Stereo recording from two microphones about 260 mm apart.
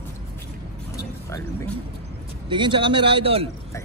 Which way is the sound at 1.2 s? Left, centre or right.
Centre.